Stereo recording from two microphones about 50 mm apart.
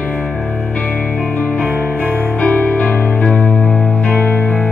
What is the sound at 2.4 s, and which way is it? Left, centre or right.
Music, left.